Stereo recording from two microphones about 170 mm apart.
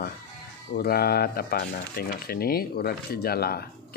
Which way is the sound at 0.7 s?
65° left (ahead or behind).